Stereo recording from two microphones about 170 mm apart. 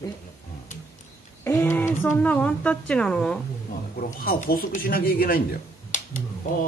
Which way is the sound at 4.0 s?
55° left (ahead or behind).